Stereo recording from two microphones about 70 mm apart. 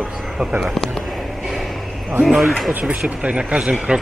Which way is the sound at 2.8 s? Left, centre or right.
Centre.